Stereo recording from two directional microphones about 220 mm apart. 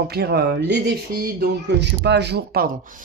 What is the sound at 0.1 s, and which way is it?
Speech, 45° right (ahead or behind).